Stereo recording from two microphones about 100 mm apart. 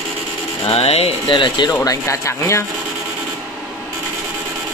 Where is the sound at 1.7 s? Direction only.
30° left (ahead or behind).